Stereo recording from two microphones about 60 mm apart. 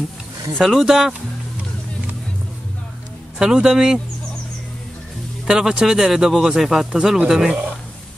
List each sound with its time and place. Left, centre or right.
0.6 s speech: centre
3.3 s speech: centre
5.5 s speech: centre